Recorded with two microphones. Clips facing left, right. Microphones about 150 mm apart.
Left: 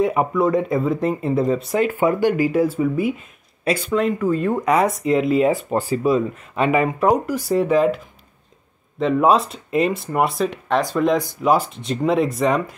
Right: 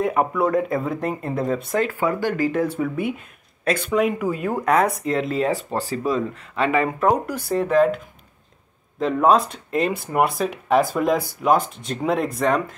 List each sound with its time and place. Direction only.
0.0 s speech: centre (ahead or behind)
1.9 s speech: 15° left (ahead or behind)
3.9 s speech: 10° right (ahead or behind)
9.0 s speech: centre (ahead or behind)